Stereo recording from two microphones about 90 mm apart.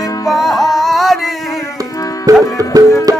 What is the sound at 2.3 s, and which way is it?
Music, 40° right (ahead or behind).